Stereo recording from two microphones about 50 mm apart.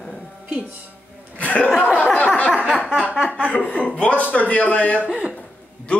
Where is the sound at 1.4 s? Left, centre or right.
Left.